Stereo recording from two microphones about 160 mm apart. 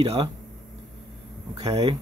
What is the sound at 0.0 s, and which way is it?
Speech, 35° right (ahead or behind).